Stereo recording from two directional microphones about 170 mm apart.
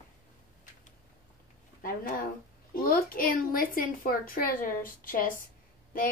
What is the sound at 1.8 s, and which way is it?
Speech, 55° left (ahead or behind).